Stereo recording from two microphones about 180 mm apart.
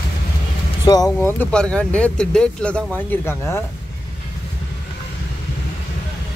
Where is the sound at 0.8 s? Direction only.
20° left (ahead or behind).